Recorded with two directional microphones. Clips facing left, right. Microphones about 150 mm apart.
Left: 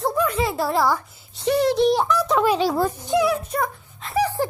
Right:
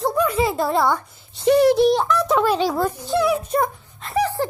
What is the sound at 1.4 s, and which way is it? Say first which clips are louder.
Speech: right 4 dB; 10° right (ahead or behind).